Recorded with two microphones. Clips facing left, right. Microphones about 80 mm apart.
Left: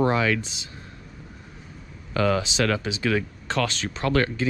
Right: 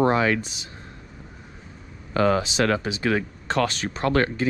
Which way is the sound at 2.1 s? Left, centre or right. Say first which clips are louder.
Right 2 dB; right.